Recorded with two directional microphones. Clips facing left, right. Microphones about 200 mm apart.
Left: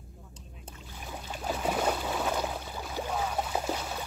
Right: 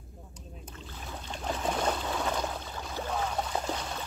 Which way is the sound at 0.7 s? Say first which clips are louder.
Left 1 dB; 10° left (ahead or behind).